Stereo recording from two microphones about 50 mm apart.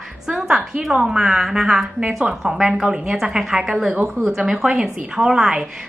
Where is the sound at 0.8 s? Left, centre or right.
Centre.